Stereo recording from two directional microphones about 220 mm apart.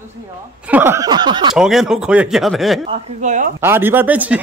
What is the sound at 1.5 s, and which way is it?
Speech, centre (ahead or behind).